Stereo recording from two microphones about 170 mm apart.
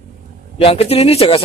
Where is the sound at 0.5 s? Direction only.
35° left (ahead or behind).